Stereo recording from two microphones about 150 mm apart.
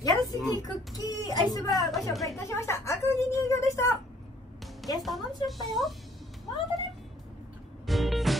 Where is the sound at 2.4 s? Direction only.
20° left (ahead or behind).